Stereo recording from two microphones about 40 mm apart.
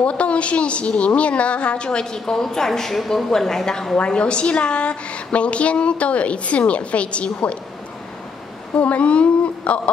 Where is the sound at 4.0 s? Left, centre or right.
Left.